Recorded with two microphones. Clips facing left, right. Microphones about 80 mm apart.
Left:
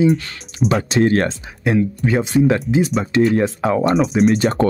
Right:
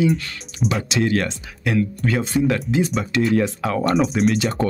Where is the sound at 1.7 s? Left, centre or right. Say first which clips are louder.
Left 3 dB; centre.